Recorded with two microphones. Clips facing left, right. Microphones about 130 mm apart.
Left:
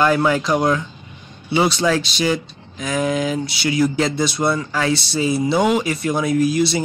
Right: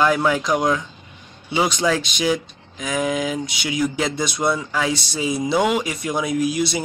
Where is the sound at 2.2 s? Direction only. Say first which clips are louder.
Left 1 dB; 5° right (ahead or behind).